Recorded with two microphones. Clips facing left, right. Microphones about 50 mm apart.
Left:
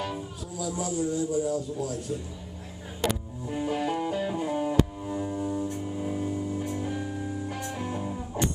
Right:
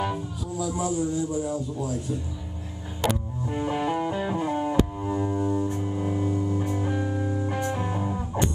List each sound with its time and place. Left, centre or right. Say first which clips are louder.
0.0 s music: right 5 dB; centre
1.5 s a man's voice: right 1 dB; right
3.0 s music: right 3 dB; centre